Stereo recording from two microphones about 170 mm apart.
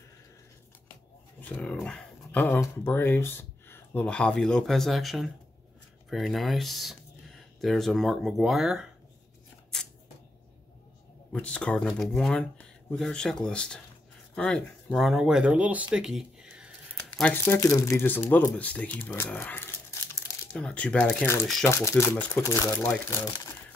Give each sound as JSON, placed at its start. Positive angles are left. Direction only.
{"t": 1.5, "sound": "speech", "side_deg": 5}
{"t": 11.3, "sound": "speech", "side_deg": 5}
{"t": 15.9, "sound": "a sound", "side_deg": -5}
{"t": 17.2, "sound": "speech", "side_deg": 10}
{"t": 21.6, "sound": "speech", "side_deg": 15}